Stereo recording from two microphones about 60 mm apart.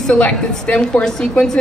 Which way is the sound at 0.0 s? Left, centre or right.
Centre.